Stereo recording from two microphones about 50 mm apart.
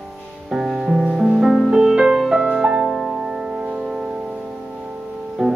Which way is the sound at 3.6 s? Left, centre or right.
Right.